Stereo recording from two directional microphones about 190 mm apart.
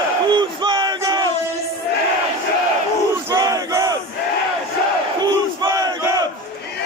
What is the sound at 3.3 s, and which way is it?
Battle cry, 15° right (ahead or behind).